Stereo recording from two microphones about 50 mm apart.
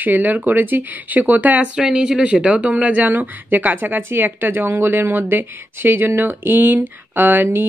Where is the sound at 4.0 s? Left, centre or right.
Right.